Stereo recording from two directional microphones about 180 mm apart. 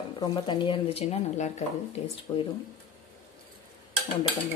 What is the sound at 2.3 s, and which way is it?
Speech, 15° left (ahead or behind).